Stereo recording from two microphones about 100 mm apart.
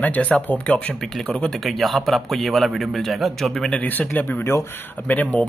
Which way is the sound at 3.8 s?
15° left (ahead or behind).